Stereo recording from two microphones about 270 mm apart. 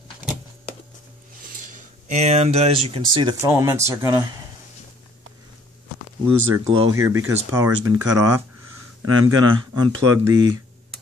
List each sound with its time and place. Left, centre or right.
1.4 s speech: right; by 4.3 s centre
6.5 s speech: centre
9.0 s speech: right